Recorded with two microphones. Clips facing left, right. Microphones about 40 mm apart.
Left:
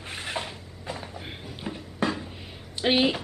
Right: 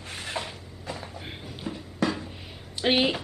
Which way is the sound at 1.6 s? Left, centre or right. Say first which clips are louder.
Even; centre.